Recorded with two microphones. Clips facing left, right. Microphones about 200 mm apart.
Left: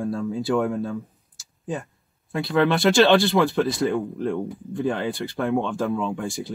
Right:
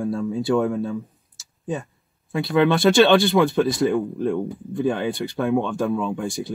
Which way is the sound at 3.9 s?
20° right (ahead or behind).